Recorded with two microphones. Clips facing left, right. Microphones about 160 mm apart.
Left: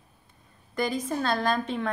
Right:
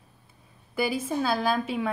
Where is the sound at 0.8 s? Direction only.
5° right (ahead or behind).